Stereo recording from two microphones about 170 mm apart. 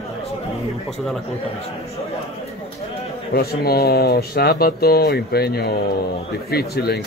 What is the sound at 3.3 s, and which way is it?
Speech, 65° left (ahead or behind).